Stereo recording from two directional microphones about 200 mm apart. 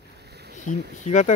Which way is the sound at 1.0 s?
35° left (ahead or behind).